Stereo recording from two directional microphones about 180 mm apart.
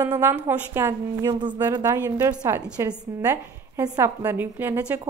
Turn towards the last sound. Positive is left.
turn(degrees=-10)  # may be behind; listen again after turning